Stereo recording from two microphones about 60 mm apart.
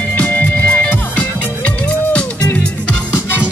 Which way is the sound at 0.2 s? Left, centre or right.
Left.